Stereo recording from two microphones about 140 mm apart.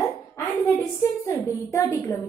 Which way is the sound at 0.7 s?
20° left (ahead or behind).